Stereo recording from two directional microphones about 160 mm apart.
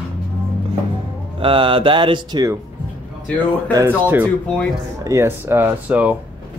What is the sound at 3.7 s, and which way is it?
Speech, 15° right (ahead or behind).